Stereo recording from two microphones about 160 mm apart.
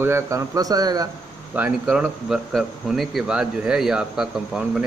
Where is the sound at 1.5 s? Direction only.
10° right (ahead or behind).